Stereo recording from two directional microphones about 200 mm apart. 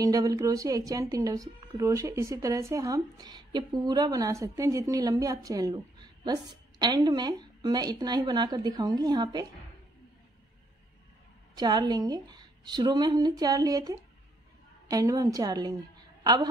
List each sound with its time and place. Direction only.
0.0 s a woman's voice: 15° right (ahead or behind)
11.5 s a woman's voice: 20° right (ahead or behind)